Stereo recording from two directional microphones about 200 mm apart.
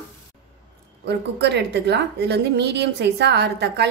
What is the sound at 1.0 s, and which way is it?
A woman's voice, 55° right (ahead or behind).